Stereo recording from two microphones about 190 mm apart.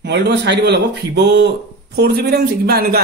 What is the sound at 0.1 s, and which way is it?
Speech, 65° right (ahead or behind).